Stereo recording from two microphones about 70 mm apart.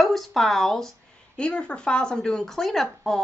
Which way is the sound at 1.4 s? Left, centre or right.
Centre.